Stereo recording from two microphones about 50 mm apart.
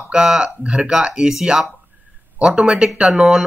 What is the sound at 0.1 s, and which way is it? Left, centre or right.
Speech, centre.